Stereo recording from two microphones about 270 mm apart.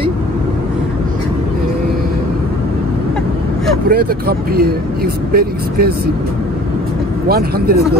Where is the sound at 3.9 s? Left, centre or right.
Right.